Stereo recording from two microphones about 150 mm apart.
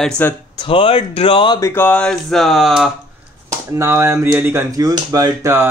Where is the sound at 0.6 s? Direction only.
35° left (ahead or behind).